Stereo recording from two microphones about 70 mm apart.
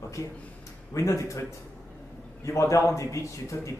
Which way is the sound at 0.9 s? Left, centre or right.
Left.